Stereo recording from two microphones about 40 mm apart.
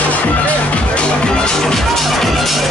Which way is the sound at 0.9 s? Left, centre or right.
Left.